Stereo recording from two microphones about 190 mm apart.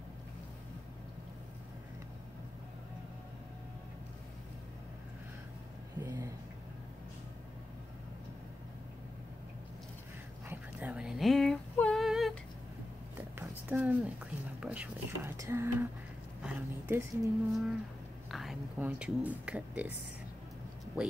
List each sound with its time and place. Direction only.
5.9 s a sound: 15° right (ahead or behind)
10.5 s female singing: 10° right (ahead or behind)
13.4 s a sound: 10° right (ahead or behind)
14.6 s speech: 10° right (ahead or behind)
17.5 s speech: centre (ahead or behind)
21.0 s speech: 5° right (ahead or behind)